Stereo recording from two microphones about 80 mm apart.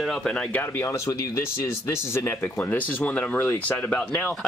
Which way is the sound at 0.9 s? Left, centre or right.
Left.